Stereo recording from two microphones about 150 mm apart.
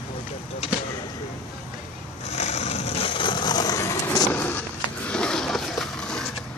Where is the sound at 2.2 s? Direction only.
45° left (ahead or behind); by 6.2 s 5° left (ahead or behind).